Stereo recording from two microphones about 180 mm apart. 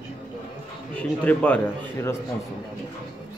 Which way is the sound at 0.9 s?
5° left (ahead or behind).